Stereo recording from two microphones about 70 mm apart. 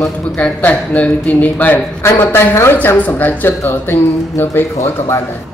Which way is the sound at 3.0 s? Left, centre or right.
Left.